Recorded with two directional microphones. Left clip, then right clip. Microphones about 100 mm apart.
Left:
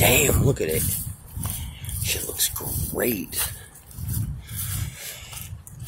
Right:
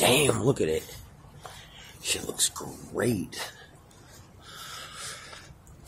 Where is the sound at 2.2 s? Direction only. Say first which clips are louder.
Left 2 dB; centre (ahead or behind).